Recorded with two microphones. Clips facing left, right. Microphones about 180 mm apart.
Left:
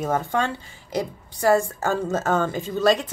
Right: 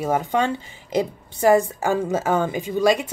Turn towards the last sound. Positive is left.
turn(degrees=-10)  # may be behind; listen again after turning